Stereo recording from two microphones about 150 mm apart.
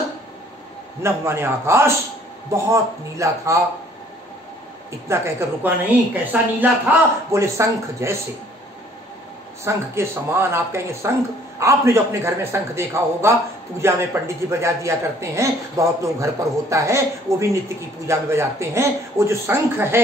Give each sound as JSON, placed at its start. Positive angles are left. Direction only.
{"t": 1.0, "sound": "a man's voice", "side_deg": -15}
{"t": 5.0, "sound": "speech", "side_deg": -15}
{"t": 9.7, "sound": "a man's voice", "side_deg": -15}